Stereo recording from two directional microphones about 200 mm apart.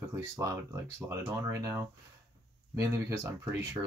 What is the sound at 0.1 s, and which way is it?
Speech, 15° right (ahead or behind).